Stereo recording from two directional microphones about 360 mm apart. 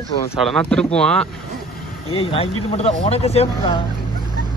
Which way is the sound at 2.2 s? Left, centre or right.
Centre.